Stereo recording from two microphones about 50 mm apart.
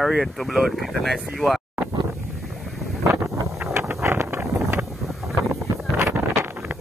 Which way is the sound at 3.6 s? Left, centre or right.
Right.